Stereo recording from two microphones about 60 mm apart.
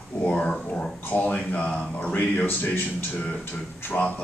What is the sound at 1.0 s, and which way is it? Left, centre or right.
Speech, left.